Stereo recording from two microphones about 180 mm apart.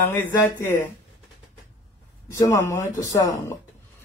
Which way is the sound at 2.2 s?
15° left (ahead or behind).